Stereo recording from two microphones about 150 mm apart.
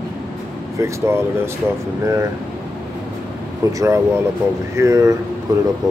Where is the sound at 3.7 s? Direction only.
20° right (ahead or behind).